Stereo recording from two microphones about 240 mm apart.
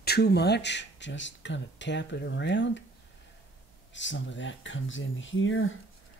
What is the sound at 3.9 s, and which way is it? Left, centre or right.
Speech, left.